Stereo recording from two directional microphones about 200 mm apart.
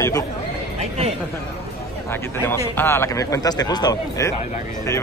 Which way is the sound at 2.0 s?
10° left (ahead or behind).